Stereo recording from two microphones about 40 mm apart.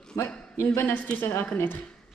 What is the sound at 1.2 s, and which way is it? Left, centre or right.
Speech, left.